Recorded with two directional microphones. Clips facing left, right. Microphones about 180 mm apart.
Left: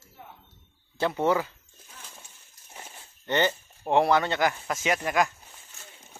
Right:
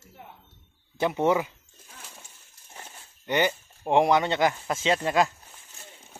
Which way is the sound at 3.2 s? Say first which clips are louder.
Even; 10° right (ahead or behind).